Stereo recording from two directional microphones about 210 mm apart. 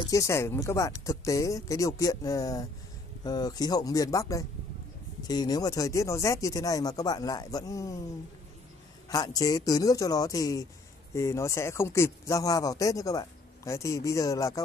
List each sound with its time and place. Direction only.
0.0 s speech: 15° left (ahead or behind)
9.1 s speech: 20° left (ahead or behind)